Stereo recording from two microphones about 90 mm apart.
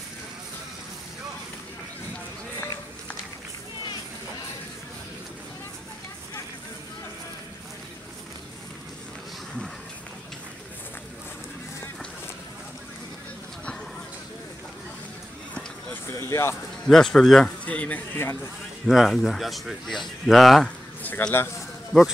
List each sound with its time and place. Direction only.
16.1 s a sound: 30° left (ahead or behind)
16.8 s speech: 5° left (ahead or behind)
17.6 s speech: 15° left (ahead or behind)
18.9 s speech: centre (ahead or behind)
21.0 s a sound: 20° left (ahead or behind)
21.9 s speech: 5° right (ahead or behind)